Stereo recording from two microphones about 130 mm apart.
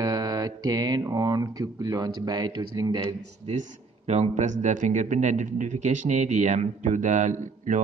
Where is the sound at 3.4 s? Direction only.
60° right (ahead or behind).